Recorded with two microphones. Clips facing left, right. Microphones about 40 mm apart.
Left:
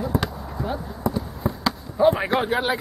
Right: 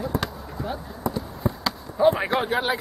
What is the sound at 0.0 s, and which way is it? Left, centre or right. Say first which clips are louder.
Basketball bounce: left 2 dB; centre.